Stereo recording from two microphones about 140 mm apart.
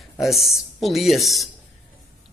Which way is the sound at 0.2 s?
Centre (ahead or behind).